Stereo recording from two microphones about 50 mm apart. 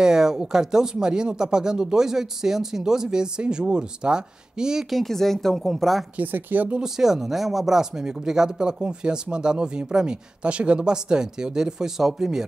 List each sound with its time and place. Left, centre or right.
0.0 s speech: centre
4.8 s a woman's voice: centre
6.1 s speech: right
6.8 s speech: centre